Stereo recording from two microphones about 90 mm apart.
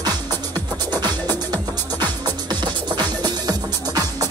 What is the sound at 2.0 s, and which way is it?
Music, 55° right (ahead or behind).